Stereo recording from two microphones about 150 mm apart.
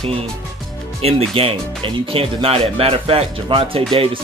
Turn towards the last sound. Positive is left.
turn(degrees=-40)  # may be behind; listen again after turning